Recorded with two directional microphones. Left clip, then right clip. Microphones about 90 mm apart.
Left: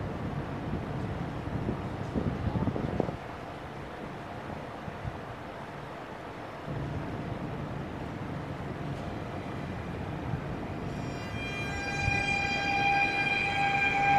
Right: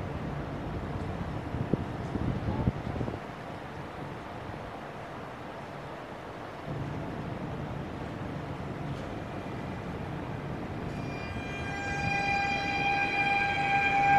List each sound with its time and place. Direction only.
11.9 s train: 40° left (ahead or behind)